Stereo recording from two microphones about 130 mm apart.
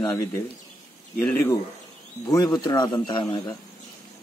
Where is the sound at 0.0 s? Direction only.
20° left (ahead or behind).